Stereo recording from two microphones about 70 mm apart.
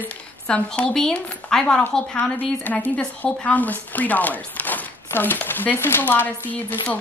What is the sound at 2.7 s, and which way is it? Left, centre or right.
Speech, left.